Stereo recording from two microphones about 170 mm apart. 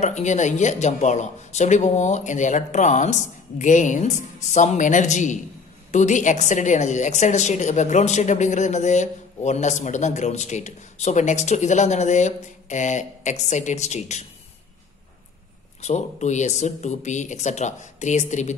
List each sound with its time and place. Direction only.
0.0 s a woman's voice: 45° left (ahead or behind)
15.8 s a woman's voice: 45° left (ahead or behind)